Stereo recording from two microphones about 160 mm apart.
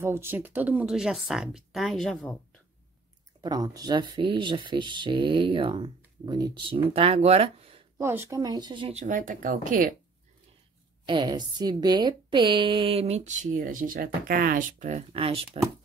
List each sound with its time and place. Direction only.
0.0 s speech: 15° right (ahead or behind); by 2.3 s 5° left (ahead or behind)
3.3 s speech: 25° right (ahead or behind)
8.0 s speech: 15° right (ahead or behind)
8.9 s speech: 55° right (ahead or behind)
11.1 s a woman's voice: 30° right (ahead or behind)